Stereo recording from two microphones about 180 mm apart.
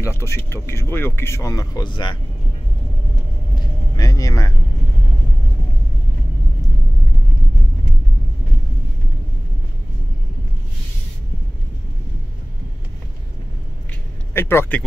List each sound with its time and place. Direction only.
0.0 s speech: 15° left (ahead or behind)
3.9 s speech: 20° left (ahead or behind)
14.3 s speech: 15° left (ahead or behind)